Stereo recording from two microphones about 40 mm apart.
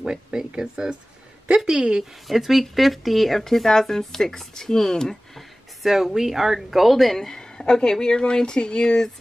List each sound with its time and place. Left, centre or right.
0.0 s speech: centre
2.2 s speech: centre
5.8 s speech: centre
7.2 s speech: centre